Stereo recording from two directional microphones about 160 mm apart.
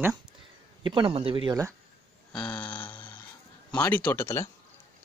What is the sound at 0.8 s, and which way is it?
Speech, 30° right (ahead or behind).